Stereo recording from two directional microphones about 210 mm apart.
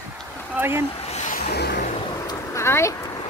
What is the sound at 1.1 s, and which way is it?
Vehicle, 35° left (ahead or behind).